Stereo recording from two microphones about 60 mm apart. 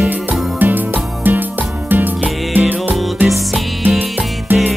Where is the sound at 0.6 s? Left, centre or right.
Right.